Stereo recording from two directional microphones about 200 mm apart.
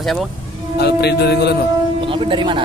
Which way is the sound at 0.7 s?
55° left (ahead or behind).